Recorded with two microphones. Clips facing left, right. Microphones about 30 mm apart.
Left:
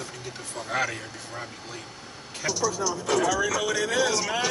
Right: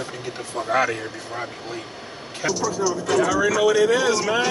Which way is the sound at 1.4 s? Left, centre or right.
Right.